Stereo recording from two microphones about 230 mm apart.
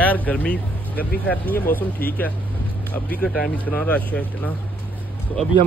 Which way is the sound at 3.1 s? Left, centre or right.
Centre.